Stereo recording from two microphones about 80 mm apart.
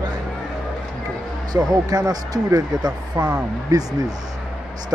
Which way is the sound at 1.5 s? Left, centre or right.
Right.